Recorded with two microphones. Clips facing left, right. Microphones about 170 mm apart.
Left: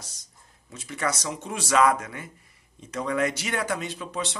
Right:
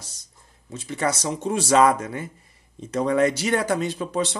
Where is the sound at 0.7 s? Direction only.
30° right (ahead or behind).